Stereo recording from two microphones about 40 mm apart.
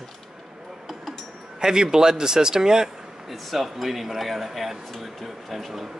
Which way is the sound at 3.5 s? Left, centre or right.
Centre.